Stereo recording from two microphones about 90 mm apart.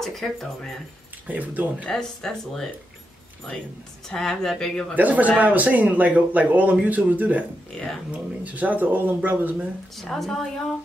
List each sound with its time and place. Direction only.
0.0 s speech: centre (ahead or behind)
1.2 s speech: 15° right (ahead or behind)
1.9 s speech: 5° left (ahead or behind)
4.1 s speech: 5° left (ahead or behind)
4.9 s speech: 20° right (ahead or behind)
9.9 s speech: centre (ahead or behind)